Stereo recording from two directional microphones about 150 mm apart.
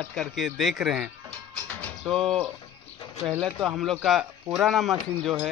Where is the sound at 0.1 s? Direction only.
Centre (ahead or behind).